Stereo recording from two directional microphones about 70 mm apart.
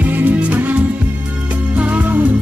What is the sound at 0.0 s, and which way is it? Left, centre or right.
Music, right.